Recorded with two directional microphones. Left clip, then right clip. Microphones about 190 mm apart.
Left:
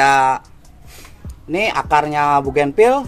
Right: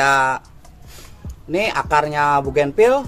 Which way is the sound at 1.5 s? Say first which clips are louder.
Left 2 dB; 30° left (ahead or behind).